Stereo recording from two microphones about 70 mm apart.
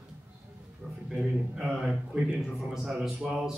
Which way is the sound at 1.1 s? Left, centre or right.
Centre.